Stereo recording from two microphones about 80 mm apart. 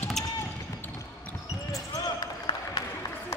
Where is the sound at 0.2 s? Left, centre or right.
Centre.